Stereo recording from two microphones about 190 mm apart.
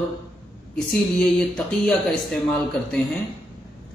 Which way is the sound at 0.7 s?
Centre (ahead or behind).